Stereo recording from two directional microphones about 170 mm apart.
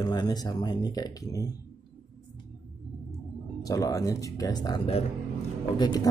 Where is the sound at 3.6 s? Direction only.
20° left (ahead or behind).